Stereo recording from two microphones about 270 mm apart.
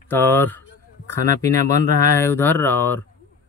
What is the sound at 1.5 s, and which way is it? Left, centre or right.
Speech, right.